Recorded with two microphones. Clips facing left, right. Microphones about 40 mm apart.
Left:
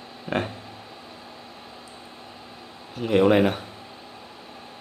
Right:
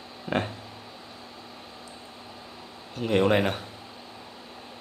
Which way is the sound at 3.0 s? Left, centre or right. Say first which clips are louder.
Left 4 dB; centre.